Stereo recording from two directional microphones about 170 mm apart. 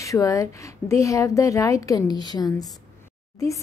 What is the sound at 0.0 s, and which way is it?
A woman's voice, 20° left (ahead or behind).